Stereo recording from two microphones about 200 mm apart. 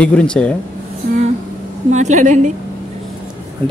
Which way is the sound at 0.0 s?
5° left (ahead or behind).